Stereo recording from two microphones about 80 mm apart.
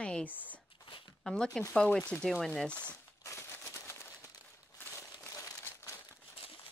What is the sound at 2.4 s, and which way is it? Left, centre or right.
Speech, centre.